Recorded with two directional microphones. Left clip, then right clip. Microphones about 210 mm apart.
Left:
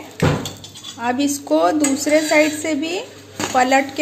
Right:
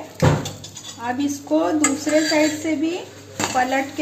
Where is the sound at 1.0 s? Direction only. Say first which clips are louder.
Left 4 dB; 50° left (ahead or behind).